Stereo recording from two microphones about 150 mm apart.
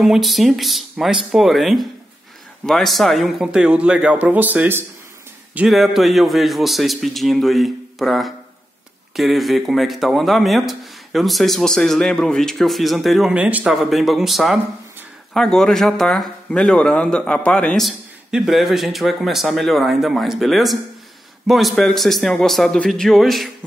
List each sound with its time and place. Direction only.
0.0 s speech: centre (ahead or behind)